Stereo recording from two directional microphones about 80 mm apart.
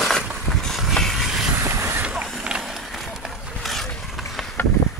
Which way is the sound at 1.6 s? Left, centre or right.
Right.